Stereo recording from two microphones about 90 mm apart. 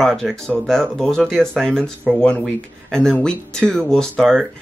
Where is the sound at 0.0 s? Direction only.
5° left (ahead or behind).